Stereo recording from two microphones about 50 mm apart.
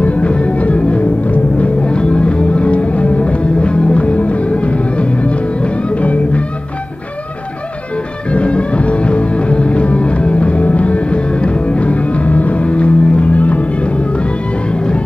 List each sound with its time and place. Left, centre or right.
0.0 s music: left
8.3 s music: left